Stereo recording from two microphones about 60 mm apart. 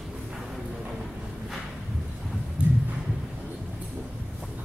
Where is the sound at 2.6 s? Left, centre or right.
Right.